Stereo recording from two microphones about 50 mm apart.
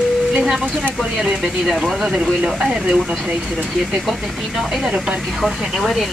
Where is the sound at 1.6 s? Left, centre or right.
Centre.